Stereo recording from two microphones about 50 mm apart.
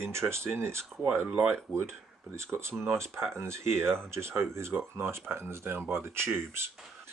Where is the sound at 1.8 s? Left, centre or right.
Right.